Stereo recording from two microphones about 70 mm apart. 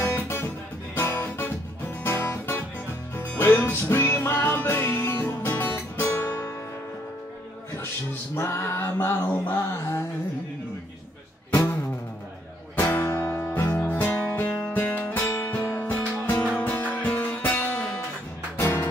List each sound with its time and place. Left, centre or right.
0.0 s music: left
7.7 s a sound: left
12.9 s music: left
18.6 s music: left